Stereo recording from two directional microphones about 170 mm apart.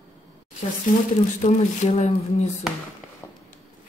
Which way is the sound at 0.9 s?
50° left (ahead or behind).